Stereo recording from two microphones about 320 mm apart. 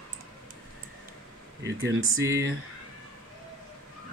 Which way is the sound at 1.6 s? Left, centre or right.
Right.